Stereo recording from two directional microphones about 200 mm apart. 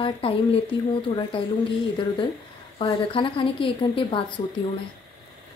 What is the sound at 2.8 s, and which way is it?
Speech, 25° left (ahead or behind).